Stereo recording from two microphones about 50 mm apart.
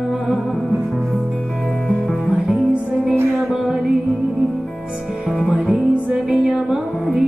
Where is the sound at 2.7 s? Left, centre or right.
Right.